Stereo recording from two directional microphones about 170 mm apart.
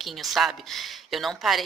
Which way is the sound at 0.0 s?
Centre (ahead or behind).